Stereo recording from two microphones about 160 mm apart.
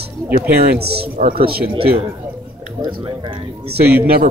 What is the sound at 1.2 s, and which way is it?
Speech, 70° right (ahead or behind).